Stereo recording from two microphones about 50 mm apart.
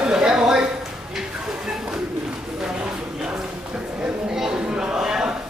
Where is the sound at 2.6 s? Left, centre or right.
Centre.